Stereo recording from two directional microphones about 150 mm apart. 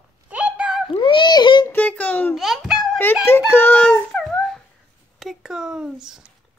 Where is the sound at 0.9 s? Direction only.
35° left (ahead or behind).